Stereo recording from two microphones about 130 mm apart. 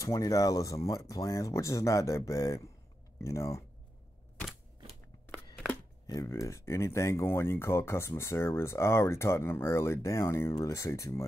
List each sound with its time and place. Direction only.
0.0 s speech: 25° left (ahead or behind)
6.0 s speech: 25° left (ahead or behind)